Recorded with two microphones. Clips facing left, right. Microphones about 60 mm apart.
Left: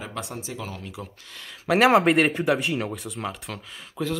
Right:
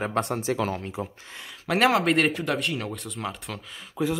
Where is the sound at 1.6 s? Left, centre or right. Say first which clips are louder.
Left 4 dB; centre.